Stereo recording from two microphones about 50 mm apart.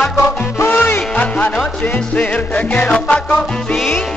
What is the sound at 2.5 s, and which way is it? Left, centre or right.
Music, left.